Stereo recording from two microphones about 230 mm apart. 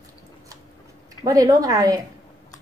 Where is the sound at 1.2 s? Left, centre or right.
Centre.